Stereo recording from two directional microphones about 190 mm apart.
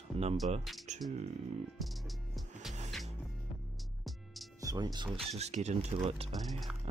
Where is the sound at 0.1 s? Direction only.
30° right (ahead or behind).